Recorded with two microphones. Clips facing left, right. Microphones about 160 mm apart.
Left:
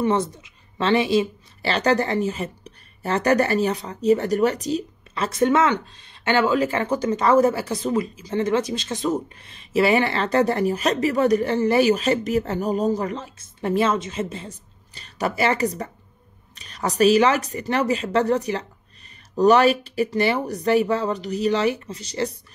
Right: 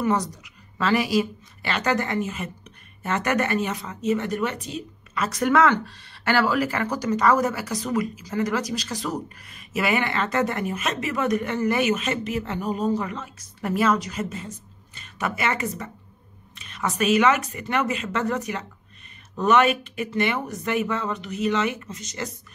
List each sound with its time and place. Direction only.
0.0 s a woman's voice: 25° left (ahead or behind)